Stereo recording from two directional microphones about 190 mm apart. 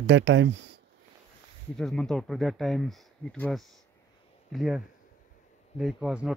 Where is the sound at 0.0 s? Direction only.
75° right (ahead or behind).